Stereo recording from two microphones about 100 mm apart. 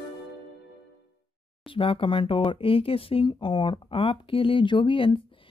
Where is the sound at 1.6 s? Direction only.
60° left (ahead or behind).